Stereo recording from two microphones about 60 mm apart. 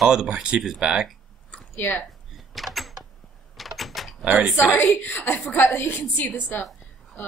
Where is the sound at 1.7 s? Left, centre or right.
Left.